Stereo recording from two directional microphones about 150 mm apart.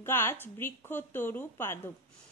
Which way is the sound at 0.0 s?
15° left (ahead or behind).